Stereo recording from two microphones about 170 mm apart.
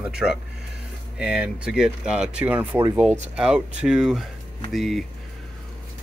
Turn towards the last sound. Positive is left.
turn(degrees=0)  # may be behind; listen again after turning